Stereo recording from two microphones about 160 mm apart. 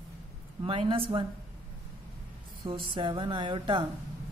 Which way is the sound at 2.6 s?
30° right (ahead or behind).